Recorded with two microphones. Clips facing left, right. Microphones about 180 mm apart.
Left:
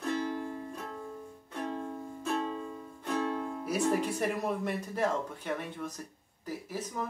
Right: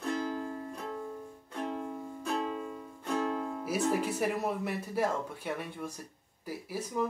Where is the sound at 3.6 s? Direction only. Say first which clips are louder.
Left 1 dB; 5° right (ahead or behind).